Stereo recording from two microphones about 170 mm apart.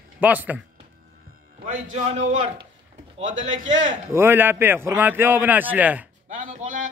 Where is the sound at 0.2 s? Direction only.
10° right (ahead or behind).